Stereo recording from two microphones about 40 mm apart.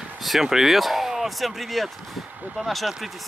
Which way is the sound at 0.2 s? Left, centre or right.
Centre.